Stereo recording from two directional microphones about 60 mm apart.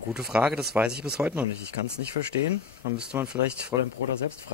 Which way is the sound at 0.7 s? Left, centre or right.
Right.